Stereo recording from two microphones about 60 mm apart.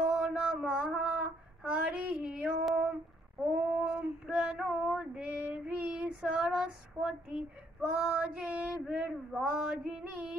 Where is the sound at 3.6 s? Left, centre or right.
Centre.